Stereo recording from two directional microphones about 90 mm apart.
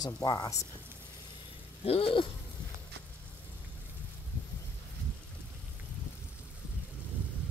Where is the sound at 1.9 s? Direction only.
90° left.